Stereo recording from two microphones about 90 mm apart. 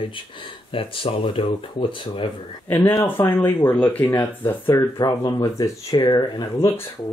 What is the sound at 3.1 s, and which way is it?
Speech, 20° left (ahead or behind).